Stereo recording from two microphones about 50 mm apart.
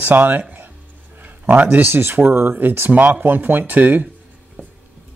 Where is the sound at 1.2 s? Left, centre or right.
Right.